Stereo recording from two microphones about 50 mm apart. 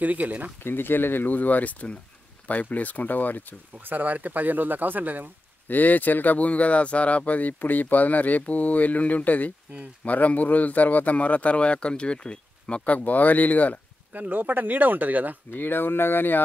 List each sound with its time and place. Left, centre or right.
0.0 s speech: right
0.7 s speech: left
3.8 s speech: right
5.7 s speech: left
14.1 s speech: right
15.5 s speech: left